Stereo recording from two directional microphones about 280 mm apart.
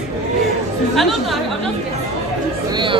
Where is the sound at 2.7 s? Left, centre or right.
Centre.